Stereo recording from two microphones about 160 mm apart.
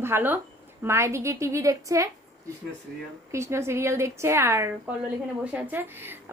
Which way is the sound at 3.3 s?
15° right (ahead or behind).